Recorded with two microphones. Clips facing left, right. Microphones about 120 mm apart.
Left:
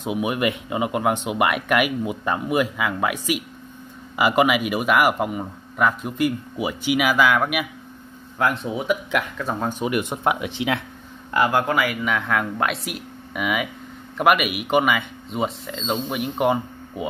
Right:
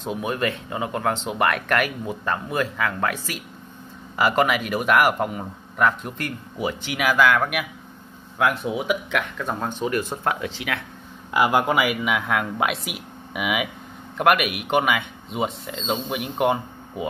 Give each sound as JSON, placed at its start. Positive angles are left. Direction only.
{"t": 0.0, "sound": "speech", "side_deg": 10}
{"t": 9.8, "sound": "speech", "side_deg": 15}
{"t": 11.3, "sound": "speech", "side_deg": -15}